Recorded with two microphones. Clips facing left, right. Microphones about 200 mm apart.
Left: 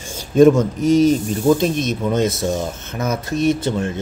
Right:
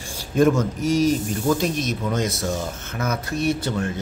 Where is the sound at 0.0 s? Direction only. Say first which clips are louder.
Left 7 dB; 20° left (ahead or behind).